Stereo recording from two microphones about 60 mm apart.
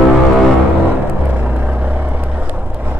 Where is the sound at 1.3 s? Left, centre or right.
Right.